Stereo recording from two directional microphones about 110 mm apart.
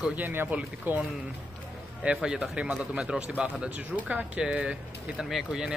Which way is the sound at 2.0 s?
5° right (ahead or behind).